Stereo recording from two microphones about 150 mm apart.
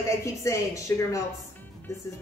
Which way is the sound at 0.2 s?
20° left (ahead or behind).